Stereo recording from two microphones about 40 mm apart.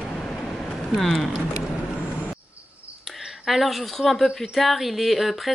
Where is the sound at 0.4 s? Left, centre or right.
Centre.